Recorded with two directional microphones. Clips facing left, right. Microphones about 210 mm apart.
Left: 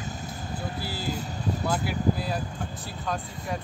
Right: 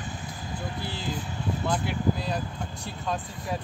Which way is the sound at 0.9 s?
40° left (ahead or behind).